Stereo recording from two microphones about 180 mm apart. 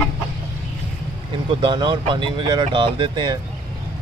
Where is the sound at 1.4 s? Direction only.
25° right (ahead or behind).